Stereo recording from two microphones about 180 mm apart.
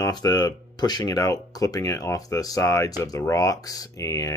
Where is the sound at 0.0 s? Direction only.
20° left (ahead or behind).